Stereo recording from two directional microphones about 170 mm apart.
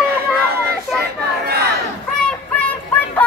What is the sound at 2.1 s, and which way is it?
Music, 5° left (ahead or behind).